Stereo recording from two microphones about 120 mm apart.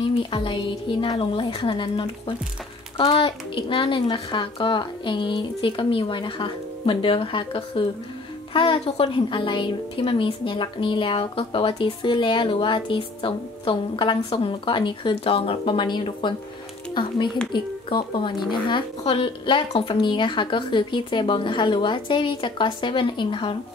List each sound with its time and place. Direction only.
0.0 s a woman's voice: 45° left (ahead or behind)